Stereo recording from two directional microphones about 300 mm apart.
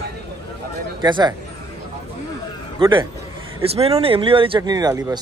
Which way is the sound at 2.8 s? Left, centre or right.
Centre.